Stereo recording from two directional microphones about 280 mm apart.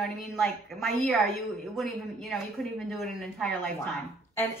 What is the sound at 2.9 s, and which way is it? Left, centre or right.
Speech, centre.